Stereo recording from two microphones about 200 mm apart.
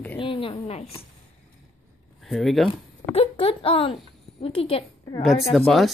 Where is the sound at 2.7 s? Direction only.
30° left (ahead or behind).